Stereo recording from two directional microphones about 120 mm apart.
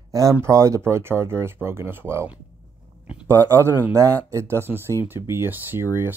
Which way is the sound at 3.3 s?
25° right (ahead or behind).